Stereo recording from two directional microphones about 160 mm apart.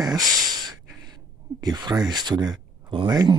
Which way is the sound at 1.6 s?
25° right (ahead or behind).